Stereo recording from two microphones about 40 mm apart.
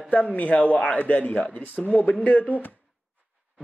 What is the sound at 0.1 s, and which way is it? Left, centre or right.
Speech, left.